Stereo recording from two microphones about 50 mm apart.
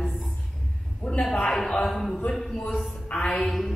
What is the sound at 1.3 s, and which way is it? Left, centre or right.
Speech, centre.